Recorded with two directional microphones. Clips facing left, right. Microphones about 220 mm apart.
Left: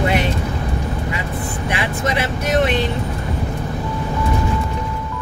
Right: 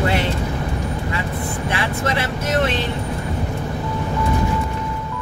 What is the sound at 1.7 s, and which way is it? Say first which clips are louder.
Speech: left 2 dB; 15° left (ahead or behind).